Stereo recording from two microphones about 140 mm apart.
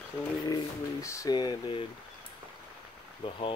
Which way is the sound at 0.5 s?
20° left (ahead or behind).